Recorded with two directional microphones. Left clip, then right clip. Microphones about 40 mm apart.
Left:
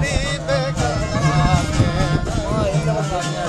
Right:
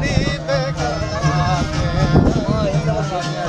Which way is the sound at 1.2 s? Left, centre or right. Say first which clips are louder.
Even; left.